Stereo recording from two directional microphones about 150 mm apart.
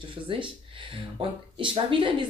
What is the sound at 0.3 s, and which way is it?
Speech, 35° right (ahead or behind).